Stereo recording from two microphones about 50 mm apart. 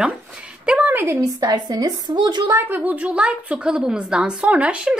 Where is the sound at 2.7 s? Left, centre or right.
Right.